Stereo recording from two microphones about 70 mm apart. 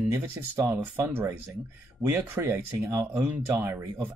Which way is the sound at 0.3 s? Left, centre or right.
Right.